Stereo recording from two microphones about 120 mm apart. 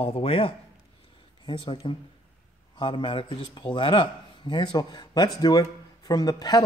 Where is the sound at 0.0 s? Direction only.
55° left (ahead or behind).